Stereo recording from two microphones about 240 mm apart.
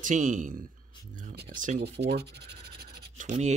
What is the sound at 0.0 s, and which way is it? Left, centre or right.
Speech, right.